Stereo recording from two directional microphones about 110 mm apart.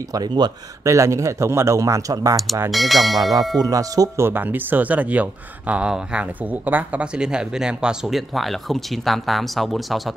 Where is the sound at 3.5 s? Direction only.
35° right (ahead or behind).